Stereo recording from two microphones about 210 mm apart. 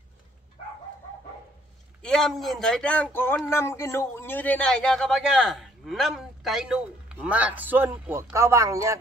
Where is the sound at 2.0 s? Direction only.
Centre (ahead or behind).